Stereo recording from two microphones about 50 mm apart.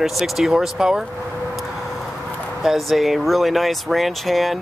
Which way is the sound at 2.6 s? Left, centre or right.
Centre.